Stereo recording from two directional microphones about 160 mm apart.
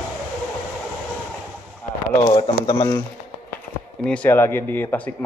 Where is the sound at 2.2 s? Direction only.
25° left (ahead or behind).